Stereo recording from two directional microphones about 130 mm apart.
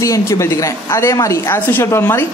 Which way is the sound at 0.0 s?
25° left (ahead or behind).